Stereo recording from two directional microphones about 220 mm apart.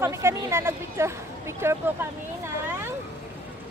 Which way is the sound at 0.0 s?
10° right (ahead or behind).